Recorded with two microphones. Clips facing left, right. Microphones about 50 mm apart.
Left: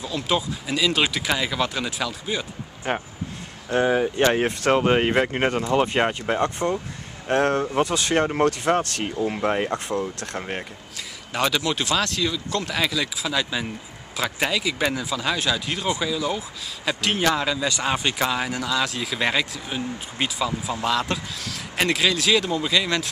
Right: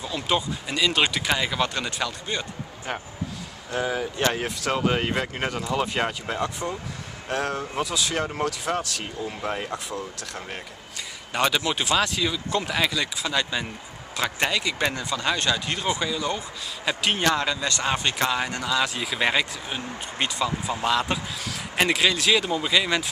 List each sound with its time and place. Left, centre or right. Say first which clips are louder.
0.0 s speech: left 1 dB; centre
2.9 s speech: left 5 dB; left
4.0 s speech: left 5 dB; left
6.4 s speech: left 5 dB; left
9.2 s speech: left 7 dB; left
9.7 s speech: left 6 dB; left
11.0 s a man's voice: even; centre